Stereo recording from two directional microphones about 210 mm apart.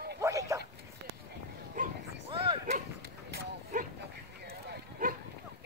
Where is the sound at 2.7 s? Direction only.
45° right (ahead or behind).